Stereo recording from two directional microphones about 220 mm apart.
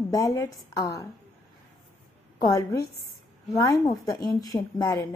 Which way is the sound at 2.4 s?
15° left (ahead or behind).